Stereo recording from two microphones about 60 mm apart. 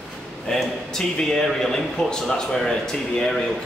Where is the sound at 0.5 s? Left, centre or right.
Centre.